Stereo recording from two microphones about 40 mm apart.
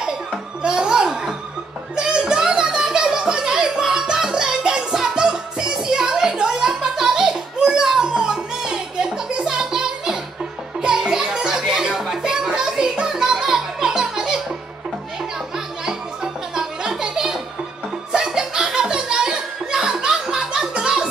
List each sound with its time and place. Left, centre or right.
0.7 s music: centre
2.0 s a sound: centre
5.1 s music: centre
15.5 s music: centre
18.1 s chuckle: centre
20.7 s music: right